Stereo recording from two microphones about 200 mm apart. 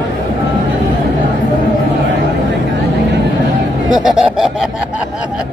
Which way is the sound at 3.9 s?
Centre (ahead or behind).